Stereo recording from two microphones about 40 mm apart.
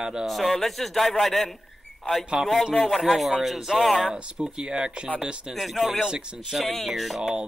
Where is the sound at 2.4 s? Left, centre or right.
Centre.